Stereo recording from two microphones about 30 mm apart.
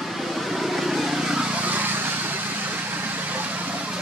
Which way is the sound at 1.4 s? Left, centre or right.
Right.